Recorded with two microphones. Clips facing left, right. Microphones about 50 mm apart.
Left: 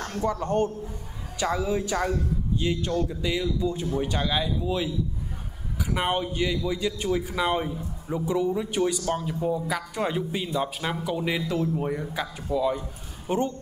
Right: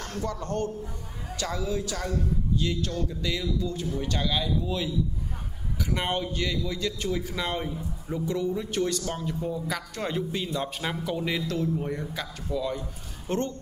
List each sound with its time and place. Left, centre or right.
0.0 s a man's voice: left